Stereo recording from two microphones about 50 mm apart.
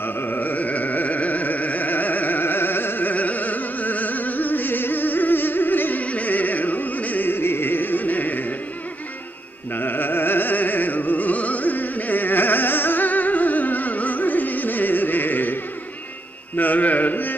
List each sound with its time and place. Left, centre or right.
0.0 s a sound: left
6.0 s music: left
9.8 s music: left
16.5 s carnatic music: left